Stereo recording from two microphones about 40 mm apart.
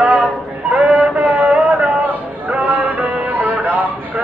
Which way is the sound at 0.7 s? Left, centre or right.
Right.